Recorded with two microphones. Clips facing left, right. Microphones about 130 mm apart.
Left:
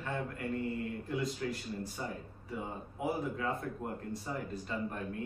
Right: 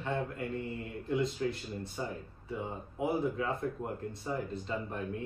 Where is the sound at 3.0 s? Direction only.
25° right (ahead or behind).